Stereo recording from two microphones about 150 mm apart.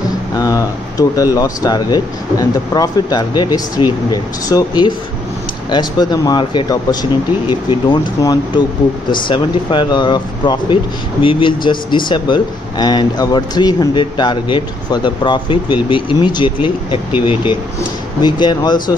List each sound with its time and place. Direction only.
0.4 s speech: 20° left (ahead or behind)
18.2 s speech: 30° left (ahead or behind)